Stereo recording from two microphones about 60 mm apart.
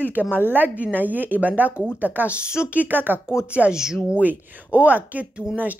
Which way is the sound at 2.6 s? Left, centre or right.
Right.